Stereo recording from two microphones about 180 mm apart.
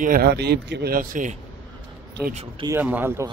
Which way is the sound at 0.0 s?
55° right (ahead or behind).